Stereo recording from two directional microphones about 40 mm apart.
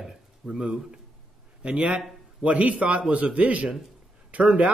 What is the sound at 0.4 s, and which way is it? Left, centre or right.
A man's voice, right.